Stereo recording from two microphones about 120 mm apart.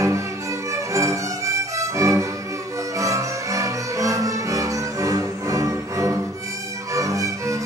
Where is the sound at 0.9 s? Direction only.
25° right (ahead or behind).